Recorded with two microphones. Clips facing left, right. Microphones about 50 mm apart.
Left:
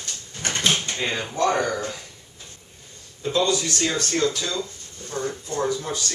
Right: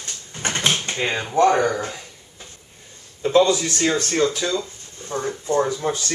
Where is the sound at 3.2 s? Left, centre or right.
Right.